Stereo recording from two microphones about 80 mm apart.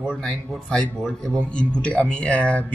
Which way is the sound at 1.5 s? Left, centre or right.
Centre.